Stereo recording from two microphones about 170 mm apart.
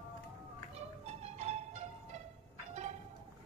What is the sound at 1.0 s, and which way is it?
Music, 40° right (ahead or behind).